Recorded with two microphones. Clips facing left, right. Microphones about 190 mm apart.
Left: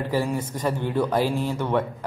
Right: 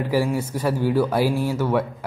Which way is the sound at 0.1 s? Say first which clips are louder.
Right 4 dB; 10° right (ahead or behind).